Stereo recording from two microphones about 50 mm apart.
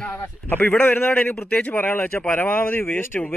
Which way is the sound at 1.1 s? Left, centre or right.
Left.